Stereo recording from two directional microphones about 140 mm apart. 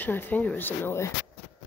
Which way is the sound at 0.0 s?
15° left (ahead or behind).